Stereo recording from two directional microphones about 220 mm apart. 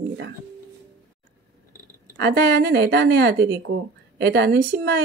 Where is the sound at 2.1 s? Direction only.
50° right (ahead or behind).